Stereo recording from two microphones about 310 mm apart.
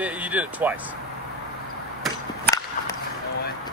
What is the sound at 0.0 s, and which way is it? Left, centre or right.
Speech, centre.